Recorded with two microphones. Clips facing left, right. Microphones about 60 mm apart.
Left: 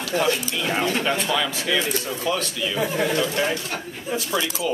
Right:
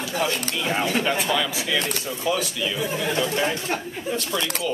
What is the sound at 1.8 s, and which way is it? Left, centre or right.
Speech, right.